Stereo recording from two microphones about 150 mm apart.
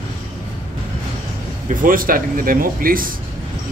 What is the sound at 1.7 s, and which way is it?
Speech, 65° right (ahead or behind).